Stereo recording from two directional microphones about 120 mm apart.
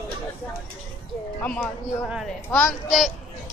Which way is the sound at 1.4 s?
10° left (ahead or behind).